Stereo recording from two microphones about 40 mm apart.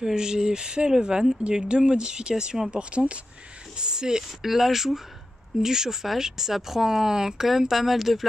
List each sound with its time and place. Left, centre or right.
0.0 s speech: centre
2.7 s speech: right
3.7 s speech: centre
4.4 s speech: centre